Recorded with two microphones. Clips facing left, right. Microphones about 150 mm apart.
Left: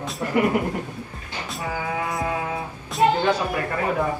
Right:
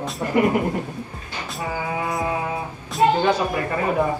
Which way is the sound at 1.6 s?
25° right (ahead or behind).